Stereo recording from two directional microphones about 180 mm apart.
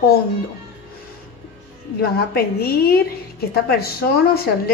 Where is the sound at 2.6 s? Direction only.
60° left (ahead or behind).